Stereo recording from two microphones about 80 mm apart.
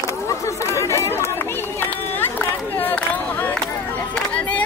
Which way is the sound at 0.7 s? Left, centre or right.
Left.